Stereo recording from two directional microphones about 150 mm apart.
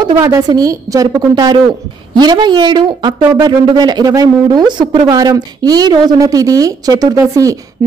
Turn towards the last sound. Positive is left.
turn(degrees=-20)  # may be behind; listen again after turning